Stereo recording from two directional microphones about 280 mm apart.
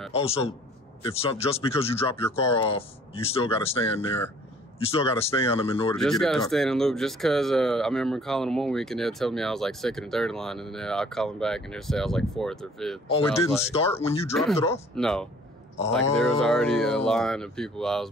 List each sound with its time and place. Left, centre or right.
0.1 s speech: left
5.9 s speech: centre
13.1 s speech: centre
13.7 s speech: left
14.3 s speech: centre